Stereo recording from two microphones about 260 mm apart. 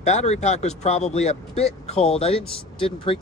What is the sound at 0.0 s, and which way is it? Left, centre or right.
Speech, left.